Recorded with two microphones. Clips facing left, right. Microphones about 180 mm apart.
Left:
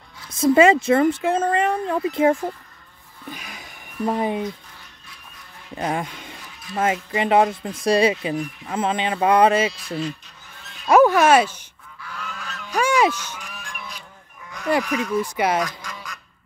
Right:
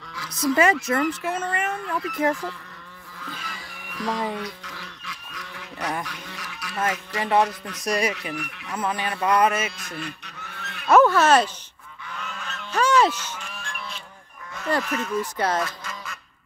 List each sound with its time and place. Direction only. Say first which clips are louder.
0.6 s speech: left 6 dB; 25° left (ahead or behind)
3.3 s music: left 2 dB; 15° left (ahead or behind)
3.9 s music: left 5 dB; 90° right
4.4 s goose: left 5 dB; 90° right
5.8 s speech: left 5 dB; 25° left (ahead or behind)
6.0 s goose: right 2 dB; 85° right
6.7 s speech: left 5 dB; 25° left (ahead or behind)
9.9 s goose: left 7 dB; 65° right (ahead or behind)
10.9 s speech: left 2 dB; 15° left (ahead or behind)
12.0 s goose: left 1 dB; centre (ahead or behind)
14.7 s speech: left 4 dB; 15° left (ahead or behind)
15.8 s quack: even; 5° right (ahead or behind)